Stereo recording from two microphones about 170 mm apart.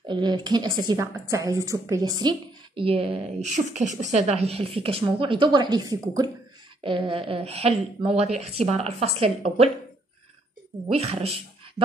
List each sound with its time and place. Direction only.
0.1 s a woman's voice: 25° right (ahead or behind)
10.9 s a woman's voice: 35° right (ahead or behind)